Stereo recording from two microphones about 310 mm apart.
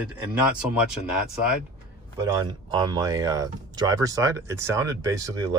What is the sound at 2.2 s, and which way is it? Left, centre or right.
Speech, centre.